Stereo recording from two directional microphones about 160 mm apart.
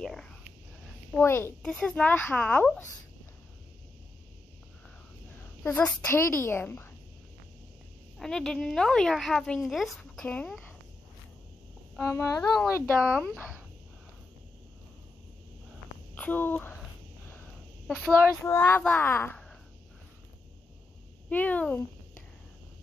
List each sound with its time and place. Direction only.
0.0 s whispering: 5° left (ahead or behind)
1.1 s a child's voice: 15° left (ahead or behind)
5.6 s a child's voice: 10° left (ahead or behind)
8.2 s a woman's voice: 5° left (ahead or behind)
12.1 s speech: 20° left (ahead or behind)
12.5 s a woman's voice: centre (ahead or behind)
16.2 s speech: 10° left (ahead or behind)
17.8 s a woman's voice: 5° left (ahead or behind)
21.3 s a child's voice: 10° left (ahead or behind)